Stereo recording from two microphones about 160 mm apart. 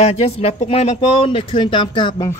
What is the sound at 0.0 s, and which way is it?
A man's voice, 40° left (ahead or behind).